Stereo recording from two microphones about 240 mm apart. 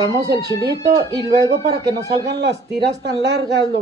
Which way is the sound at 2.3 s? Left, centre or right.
Right.